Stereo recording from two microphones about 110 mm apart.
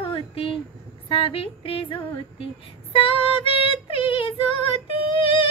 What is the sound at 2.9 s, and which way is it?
Female singing, 55° left (ahead or behind).